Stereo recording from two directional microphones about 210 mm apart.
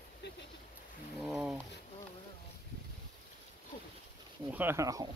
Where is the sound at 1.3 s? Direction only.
Centre (ahead or behind).